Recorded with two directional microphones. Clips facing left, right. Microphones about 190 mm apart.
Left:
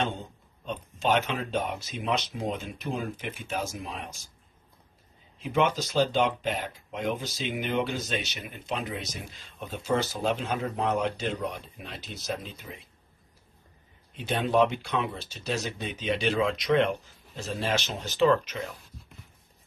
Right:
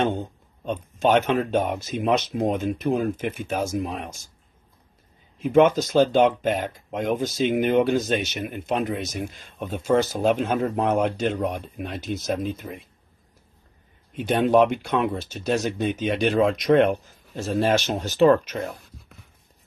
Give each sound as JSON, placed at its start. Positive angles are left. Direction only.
{"t": 0.0, "sound": "speech", "side_deg": -50}
{"t": 5.4, "sound": "speech", "side_deg": -50}
{"t": 14.1, "sound": "speech", "side_deg": -55}